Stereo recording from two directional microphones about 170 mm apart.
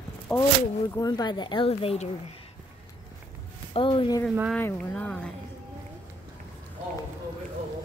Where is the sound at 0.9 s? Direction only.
25° left (ahead or behind).